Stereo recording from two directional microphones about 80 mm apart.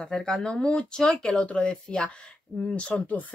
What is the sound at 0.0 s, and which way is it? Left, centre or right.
Speech, centre.